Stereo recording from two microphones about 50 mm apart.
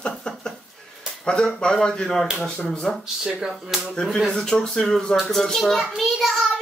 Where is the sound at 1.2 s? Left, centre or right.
Centre.